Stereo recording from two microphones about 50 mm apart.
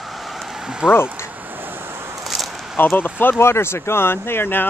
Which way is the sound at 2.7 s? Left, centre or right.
Left.